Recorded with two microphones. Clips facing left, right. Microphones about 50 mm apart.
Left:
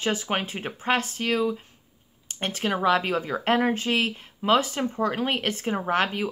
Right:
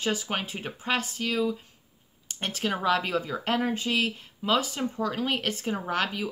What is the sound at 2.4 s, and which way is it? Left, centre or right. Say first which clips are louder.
Speech: left 4 dB; left.